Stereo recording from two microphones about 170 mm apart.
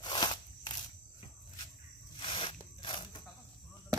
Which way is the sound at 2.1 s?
30° left (ahead or behind).